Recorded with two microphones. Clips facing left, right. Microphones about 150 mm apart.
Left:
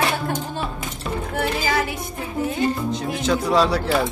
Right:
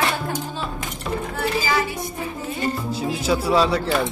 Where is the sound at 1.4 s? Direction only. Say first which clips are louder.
Left 1 dB; 60° left (ahead or behind).